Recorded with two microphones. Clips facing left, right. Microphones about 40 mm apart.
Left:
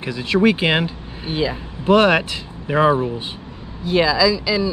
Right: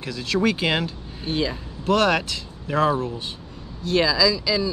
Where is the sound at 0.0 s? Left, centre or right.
Left.